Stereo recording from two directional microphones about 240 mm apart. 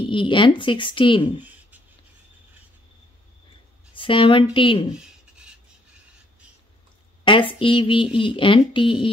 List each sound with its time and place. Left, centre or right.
0.1 s speech: centre
3.9 s speech: left
4.9 s writing: centre
7.2 s speech: left